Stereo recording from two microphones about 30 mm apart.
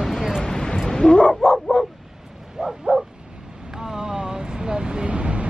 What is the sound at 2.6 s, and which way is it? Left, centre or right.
Bow-wow, centre.